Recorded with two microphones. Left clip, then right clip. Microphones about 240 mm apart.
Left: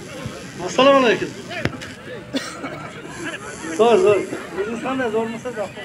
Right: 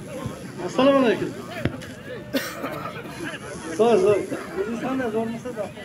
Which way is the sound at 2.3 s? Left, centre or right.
Right.